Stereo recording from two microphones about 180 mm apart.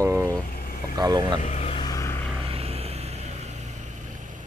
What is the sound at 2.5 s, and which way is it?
Vehicle, 35° right (ahead or behind).